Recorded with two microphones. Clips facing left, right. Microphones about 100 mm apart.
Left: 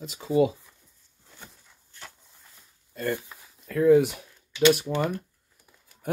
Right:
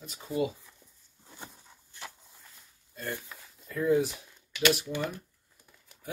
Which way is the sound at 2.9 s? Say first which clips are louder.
Left 8 dB; 80° left.